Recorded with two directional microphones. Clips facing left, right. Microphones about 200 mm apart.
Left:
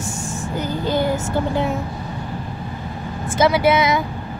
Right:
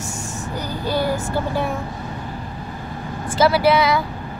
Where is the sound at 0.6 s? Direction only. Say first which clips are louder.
Left 2 dB; 20° left (ahead or behind).